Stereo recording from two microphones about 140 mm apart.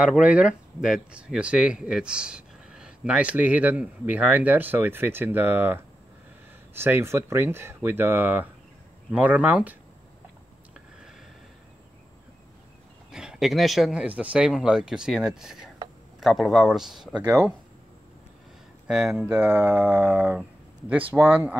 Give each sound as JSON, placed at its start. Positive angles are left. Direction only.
{"t": 0.0, "sound": "speech", "side_deg": -10}
{"t": 13.1, "sound": "speech", "side_deg": -5}
{"t": 17.2, "sound": "speech", "side_deg": -20}
{"t": 18.9, "sound": "speech", "side_deg": -5}